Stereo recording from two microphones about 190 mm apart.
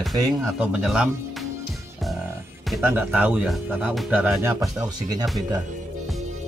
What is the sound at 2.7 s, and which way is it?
Speech, 10° right (ahead or behind).